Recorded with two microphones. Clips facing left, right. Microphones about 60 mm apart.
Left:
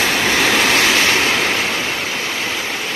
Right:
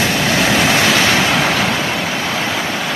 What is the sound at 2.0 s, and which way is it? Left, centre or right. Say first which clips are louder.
Vehicle: right 3 dB; right.